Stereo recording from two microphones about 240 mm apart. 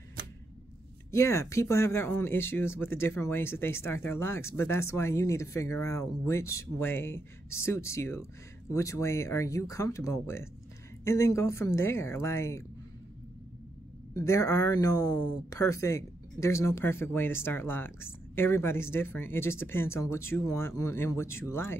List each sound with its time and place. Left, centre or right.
1.1 s speech: centre
14.1 s speech: centre